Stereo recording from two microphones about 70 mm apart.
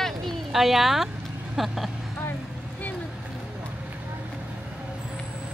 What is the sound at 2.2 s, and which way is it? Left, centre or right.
Vehicle, left.